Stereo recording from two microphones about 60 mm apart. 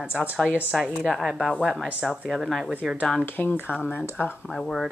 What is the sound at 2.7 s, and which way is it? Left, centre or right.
Speech, centre.